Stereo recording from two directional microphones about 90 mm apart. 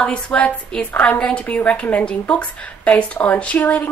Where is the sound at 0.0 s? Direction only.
10° left (ahead or behind).